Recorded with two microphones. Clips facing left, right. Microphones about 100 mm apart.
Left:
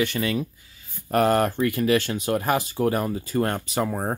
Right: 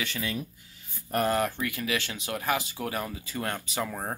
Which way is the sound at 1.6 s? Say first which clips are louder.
Left 10 dB; 45° left (ahead or behind).